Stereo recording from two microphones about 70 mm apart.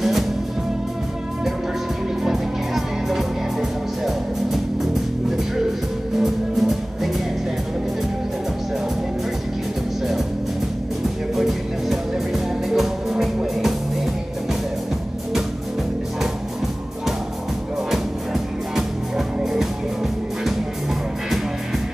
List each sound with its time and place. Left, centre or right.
2.2 s music: centre
6.1 s music: centre
11.3 s music: centre
17.9 s music: centre